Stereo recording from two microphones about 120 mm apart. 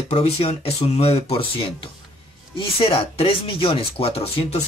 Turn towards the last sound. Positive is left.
turn(degrees=55)  # may be behind; listen again after turning